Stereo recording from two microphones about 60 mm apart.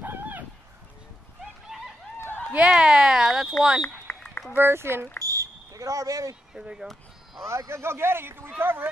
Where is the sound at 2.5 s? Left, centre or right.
Centre.